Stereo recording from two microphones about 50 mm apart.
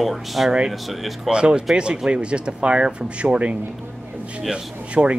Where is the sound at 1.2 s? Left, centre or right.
Centre.